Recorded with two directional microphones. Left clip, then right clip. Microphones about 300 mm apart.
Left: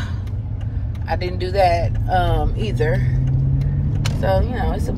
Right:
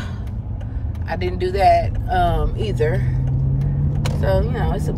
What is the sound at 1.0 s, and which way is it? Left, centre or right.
Speech, centre.